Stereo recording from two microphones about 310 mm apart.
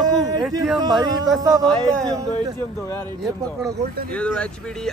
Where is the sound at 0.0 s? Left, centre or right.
Centre.